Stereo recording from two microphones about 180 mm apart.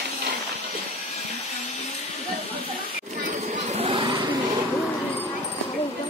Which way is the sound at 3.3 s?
40° right (ahead or behind).